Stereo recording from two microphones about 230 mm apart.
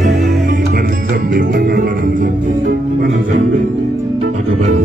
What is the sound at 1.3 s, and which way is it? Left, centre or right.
Music, right.